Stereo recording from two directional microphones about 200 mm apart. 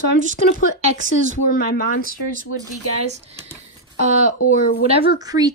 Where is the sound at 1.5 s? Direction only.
50° left (ahead or behind).